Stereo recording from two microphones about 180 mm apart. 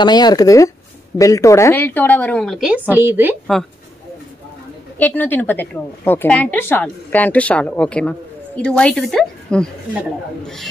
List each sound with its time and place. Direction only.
0.0 s speech: 25° left (ahead or behind); by 2.8 s centre (ahead or behind)
2.9 s speech: 10° right (ahead or behind)
4.9 s a man's voice: 10° left (ahead or behind)